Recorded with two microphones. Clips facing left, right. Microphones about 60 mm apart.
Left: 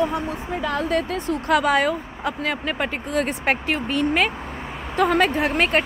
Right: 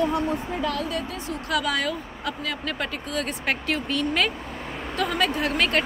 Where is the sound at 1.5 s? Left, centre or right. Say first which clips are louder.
Left 7 dB; left.